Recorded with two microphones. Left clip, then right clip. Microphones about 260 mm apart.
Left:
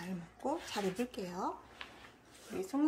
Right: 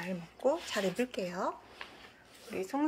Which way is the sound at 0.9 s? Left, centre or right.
Right.